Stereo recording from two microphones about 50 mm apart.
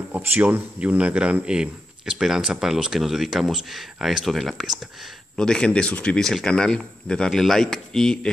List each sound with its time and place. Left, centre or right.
0.1 s a sound: right
0.4 s speech: right; by 5.1 s centre
5.3 s speech: centre
6.2 s speech: centre